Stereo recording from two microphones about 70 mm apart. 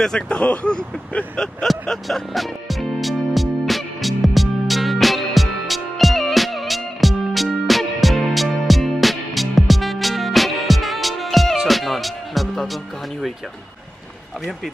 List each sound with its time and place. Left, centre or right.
0.0 s vehicle: centre